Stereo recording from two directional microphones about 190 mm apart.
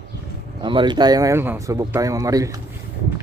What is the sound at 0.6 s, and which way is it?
Speech, 25° right (ahead or behind).